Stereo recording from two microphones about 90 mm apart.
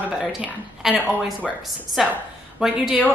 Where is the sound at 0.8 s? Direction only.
Centre (ahead or behind).